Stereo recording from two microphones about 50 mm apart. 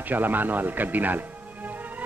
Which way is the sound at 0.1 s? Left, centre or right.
Right.